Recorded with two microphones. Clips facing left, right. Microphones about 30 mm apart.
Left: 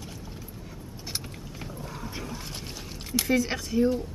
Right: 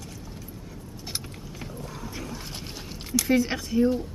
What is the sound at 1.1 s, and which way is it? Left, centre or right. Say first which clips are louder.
Roaring cats: even; centre.